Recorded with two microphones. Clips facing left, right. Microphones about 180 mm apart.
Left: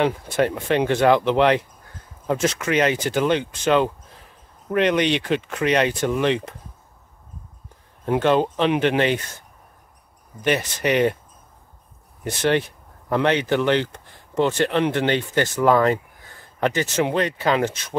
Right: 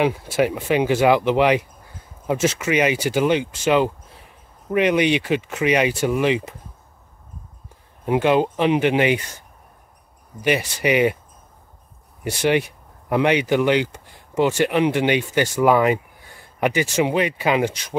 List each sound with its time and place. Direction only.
0.0 s speech: 5° right (ahead or behind)
8.0 s speech: 10° right (ahead or behind)
10.4 s speech: 10° right (ahead or behind)
12.3 s speech: 10° right (ahead or behind)